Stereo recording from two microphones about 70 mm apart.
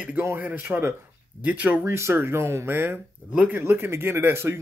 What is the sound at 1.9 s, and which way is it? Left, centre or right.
A man's voice, right.